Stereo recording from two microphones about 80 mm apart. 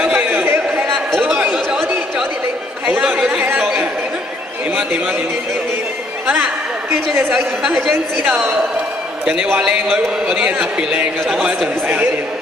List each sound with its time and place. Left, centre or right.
0.0 s chatter: centre
0.9 s chatter: centre
3.3 s chatter: right
7.3 s a woman's voice: centre
9.2 s a man's voice: centre